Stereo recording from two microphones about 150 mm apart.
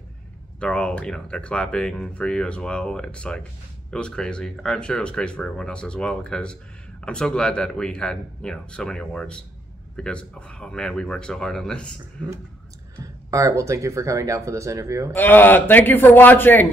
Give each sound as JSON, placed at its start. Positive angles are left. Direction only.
{"t": 0.6, "sound": "speech", "side_deg": 5}
{"t": 13.0, "sound": "speech", "side_deg": -20}
{"t": 15.1, "sound": "speech", "side_deg": 15}